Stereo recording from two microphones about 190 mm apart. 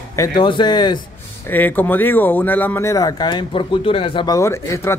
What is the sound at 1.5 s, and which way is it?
Speech, 10° left (ahead or behind).